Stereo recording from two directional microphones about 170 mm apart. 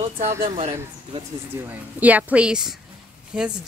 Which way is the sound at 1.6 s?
10° right (ahead or behind).